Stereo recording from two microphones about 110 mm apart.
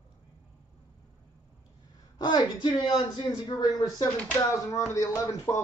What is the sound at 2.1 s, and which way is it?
A man's voice, 40° left (ahead or behind).